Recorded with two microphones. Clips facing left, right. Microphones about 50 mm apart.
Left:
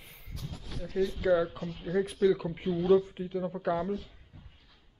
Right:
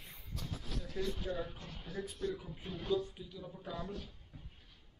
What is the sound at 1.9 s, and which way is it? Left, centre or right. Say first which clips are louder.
Speech: left 14 dB; left.